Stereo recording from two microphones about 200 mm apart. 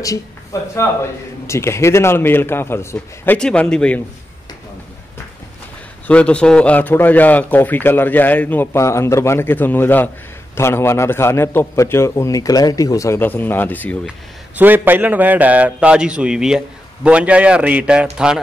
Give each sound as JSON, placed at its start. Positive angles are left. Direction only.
{"t": 0.0, "sound": "a man's voice", "side_deg": 15}
{"t": 6.0, "sound": "a man's voice", "side_deg": 5}
{"t": 14.6, "sound": "a man's voice", "side_deg": -10}